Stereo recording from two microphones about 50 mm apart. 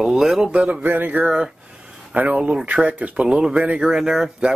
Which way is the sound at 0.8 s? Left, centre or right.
Right.